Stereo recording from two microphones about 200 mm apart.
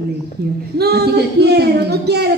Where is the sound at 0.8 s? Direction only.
55° right (ahead or behind).